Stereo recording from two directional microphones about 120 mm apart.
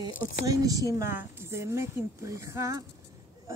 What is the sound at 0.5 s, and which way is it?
Speech, 30° right (ahead or behind).